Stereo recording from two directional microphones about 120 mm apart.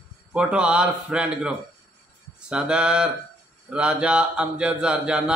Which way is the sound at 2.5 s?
5° right (ahead or behind).